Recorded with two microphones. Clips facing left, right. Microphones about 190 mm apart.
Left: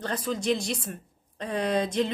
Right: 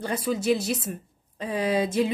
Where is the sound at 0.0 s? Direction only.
10° right (ahead or behind).